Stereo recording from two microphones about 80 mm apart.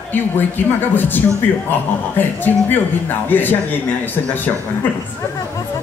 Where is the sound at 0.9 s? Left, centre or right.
Left.